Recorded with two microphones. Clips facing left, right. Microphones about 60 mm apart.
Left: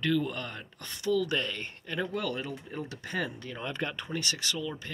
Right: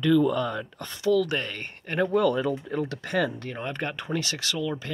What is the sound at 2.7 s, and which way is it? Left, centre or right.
Speech, right.